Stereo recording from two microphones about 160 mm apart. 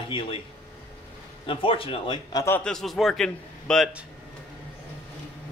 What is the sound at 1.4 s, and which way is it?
A man's voice, 35° left (ahead or behind).